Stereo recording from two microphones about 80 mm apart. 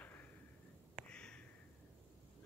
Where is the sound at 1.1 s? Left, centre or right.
Centre.